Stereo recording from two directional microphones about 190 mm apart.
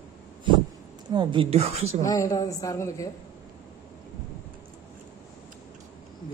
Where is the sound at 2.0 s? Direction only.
20° left (ahead or behind).